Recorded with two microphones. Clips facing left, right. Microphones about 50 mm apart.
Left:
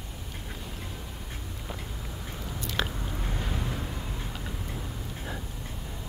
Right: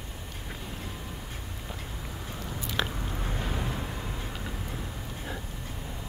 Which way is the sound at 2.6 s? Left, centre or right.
Centre.